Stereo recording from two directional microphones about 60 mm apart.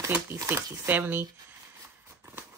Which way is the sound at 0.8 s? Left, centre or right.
Right.